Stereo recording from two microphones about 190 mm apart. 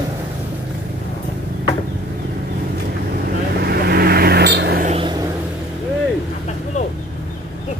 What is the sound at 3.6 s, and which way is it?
Vehicle, 55° right (ahead or behind).